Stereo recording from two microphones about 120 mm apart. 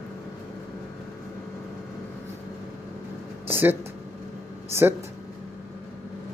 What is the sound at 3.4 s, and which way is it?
Speech, 20° right (ahead or behind).